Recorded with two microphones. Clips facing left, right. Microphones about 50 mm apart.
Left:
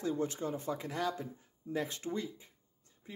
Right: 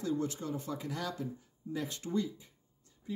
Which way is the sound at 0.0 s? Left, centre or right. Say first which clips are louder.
Even; left.